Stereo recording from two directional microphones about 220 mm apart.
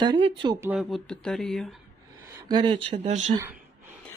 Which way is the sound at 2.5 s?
20° right (ahead or behind).